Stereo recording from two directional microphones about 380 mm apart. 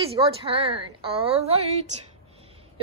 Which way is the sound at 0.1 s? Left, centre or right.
Centre.